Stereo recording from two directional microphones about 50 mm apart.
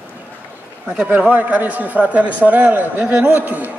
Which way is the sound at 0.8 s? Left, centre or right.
Right.